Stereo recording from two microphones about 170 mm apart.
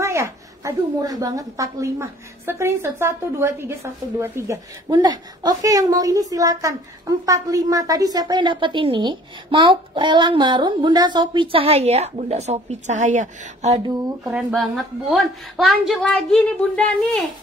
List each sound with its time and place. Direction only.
0.0 s a woman's voice: 15° right (ahead or behind); by 13.7 s 45° right (ahead or behind)
14.5 s a woman's voice: centre (ahead or behind)